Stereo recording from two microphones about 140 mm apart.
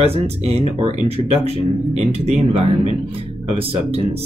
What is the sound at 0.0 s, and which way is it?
Speech, 45° right (ahead or behind).